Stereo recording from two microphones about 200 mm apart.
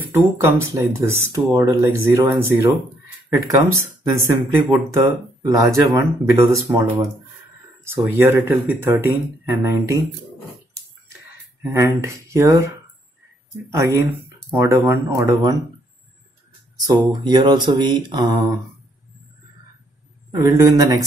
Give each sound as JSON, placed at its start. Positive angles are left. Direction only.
{"t": 0.1, "sound": "speech", "side_deg": -10}
{"t": 5.4, "sound": "speech", "side_deg": -15}
{"t": 11.6, "sound": "speech", "side_deg": -15}
{"t": 16.8, "sound": "speech", "side_deg": -20}
{"t": 20.2, "sound": "speech", "side_deg": -15}